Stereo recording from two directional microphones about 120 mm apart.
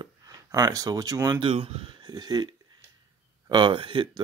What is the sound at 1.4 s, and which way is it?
Speech, 55° right (ahead or behind).